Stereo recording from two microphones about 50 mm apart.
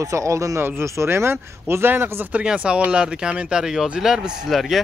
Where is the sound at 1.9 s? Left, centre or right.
Right.